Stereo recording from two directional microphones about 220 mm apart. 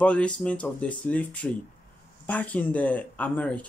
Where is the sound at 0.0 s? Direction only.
5° left (ahead or behind).